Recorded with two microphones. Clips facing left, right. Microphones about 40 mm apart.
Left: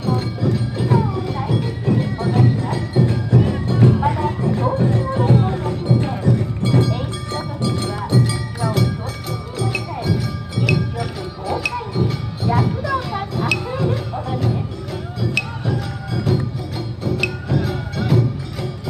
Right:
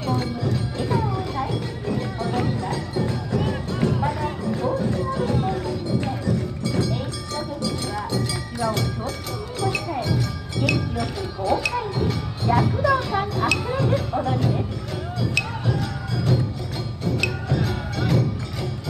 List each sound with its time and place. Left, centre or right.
0.0 s music: centre; by 8.2 s left
8.2 s music: centre